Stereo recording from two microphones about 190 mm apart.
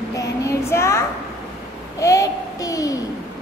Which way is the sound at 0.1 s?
15° left (ahead or behind).